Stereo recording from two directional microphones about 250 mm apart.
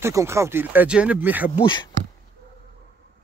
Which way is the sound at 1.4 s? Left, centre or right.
Left.